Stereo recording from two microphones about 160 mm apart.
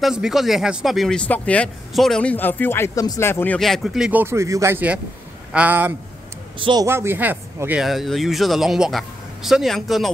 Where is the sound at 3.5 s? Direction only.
Centre (ahead or behind).